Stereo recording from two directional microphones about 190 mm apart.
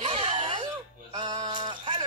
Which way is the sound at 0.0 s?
30° right (ahead or behind).